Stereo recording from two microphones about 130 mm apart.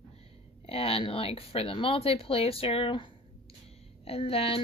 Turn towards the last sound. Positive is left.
turn(degrees=45)  # may be behind; listen again after turning